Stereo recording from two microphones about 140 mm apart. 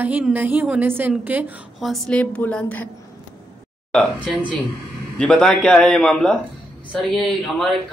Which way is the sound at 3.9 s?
10° left (ahead or behind).